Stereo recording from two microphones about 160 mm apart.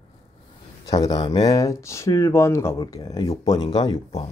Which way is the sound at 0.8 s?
25° left (ahead or behind).